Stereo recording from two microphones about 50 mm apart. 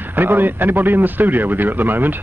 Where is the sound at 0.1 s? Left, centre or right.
Right.